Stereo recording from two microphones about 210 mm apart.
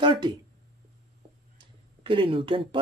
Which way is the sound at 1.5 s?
25° right (ahead or behind).